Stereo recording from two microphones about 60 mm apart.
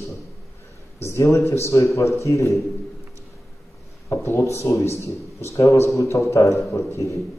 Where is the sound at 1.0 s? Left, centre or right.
Left.